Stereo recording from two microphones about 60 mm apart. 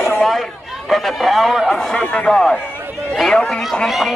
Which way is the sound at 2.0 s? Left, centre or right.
Centre.